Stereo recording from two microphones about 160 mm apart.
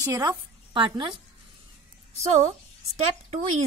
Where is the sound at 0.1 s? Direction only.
25° right (ahead or behind).